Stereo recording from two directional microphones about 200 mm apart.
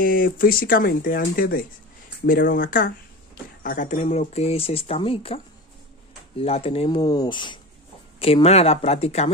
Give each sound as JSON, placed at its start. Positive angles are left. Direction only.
{"t": 0.0, "sound": "speech", "side_deg": 45}